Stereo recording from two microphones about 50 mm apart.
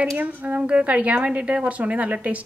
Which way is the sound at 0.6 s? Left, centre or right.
Right.